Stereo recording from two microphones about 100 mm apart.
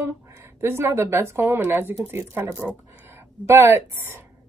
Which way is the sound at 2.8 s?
25° right (ahead or behind).